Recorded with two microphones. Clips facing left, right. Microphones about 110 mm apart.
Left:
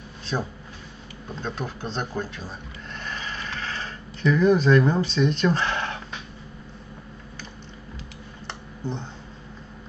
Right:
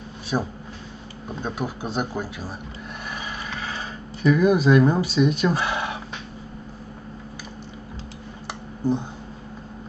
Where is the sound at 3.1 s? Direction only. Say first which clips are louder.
Even; 10° right (ahead or behind).